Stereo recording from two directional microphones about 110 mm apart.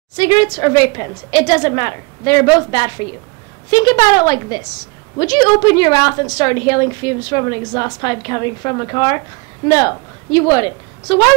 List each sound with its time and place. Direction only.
0.1 s a woman's voice: 35° left (ahead or behind)